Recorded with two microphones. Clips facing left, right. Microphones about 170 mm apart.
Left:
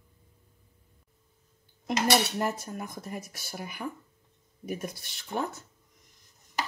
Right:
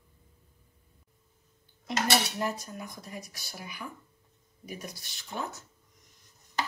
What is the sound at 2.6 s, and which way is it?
Speech, 50° left (ahead or behind).